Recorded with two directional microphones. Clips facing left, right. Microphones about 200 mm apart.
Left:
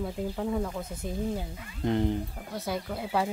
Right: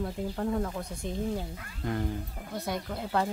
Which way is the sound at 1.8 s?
25° left (ahead or behind).